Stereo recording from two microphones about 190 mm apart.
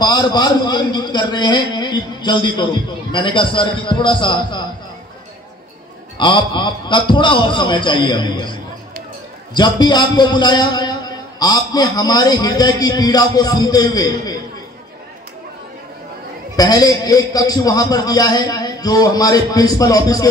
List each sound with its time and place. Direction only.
0.0 s a man's voice: 20° left (ahead or behind)
6.1 s a man's voice: 25° left (ahead or behind)
16.5 s a man's voice: 20° left (ahead or behind)